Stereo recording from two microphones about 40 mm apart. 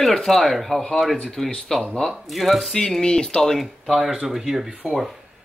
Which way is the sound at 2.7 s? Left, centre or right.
Centre.